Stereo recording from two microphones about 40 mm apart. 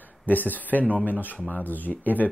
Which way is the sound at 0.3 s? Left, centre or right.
Left.